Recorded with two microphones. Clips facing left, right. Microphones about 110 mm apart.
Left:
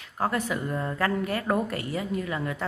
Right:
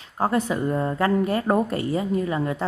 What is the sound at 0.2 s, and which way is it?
A woman's voice, 30° right (ahead or behind).